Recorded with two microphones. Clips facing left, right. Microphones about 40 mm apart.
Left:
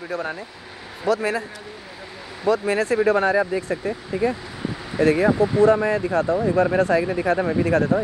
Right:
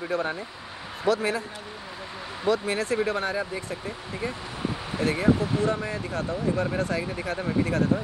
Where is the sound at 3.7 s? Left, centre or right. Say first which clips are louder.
Left 8 dB; left.